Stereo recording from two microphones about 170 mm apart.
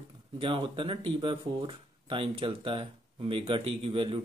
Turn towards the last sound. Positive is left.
turn(degrees=-30)  # may be behind; listen again after turning